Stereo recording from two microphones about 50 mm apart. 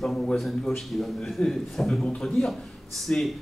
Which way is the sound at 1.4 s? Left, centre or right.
Left.